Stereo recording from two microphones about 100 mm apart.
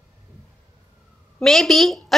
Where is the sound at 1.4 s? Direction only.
5° left (ahead or behind).